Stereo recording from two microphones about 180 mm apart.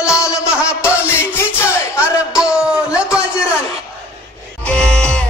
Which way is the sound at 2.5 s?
5° right (ahead or behind).